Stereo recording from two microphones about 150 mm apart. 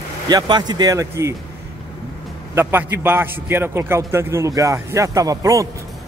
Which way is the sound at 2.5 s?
15° right (ahead or behind).